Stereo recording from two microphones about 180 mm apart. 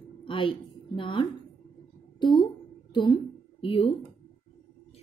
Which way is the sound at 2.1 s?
25° left (ahead or behind).